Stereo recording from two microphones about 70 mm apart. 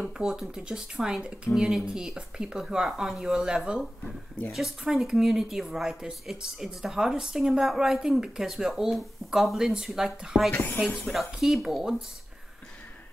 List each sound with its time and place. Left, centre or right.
0.0 s speech: centre
10.5 s speech: left
11.1 s speech: centre